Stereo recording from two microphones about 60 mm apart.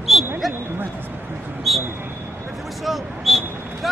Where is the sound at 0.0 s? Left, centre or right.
Centre.